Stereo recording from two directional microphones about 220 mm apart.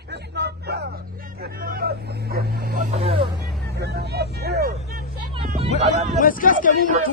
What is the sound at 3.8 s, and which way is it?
Vehicle, 45° right (ahead or behind).